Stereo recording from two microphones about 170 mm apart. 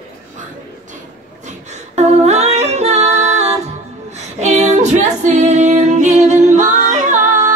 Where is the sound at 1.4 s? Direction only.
40° right (ahead or behind).